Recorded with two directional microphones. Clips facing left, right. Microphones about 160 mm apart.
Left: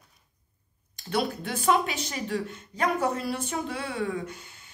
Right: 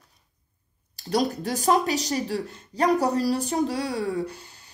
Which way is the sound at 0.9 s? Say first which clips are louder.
Right 4 dB; 40° right (ahead or behind).